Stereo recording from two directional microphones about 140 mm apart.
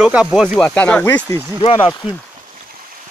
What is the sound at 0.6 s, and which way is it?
Speech, 10° left (ahead or behind).